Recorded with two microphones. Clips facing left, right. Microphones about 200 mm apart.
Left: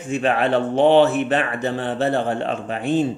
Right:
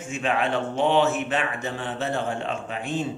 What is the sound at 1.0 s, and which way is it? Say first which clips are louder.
Speech: left 5 dB; 60° left (ahead or behind).